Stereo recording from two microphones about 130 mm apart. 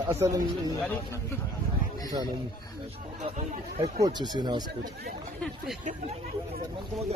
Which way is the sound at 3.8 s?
35° right (ahead or behind).